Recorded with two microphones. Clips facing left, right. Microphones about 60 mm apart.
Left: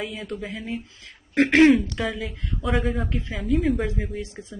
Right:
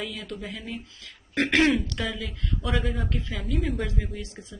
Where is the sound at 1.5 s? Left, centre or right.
Left.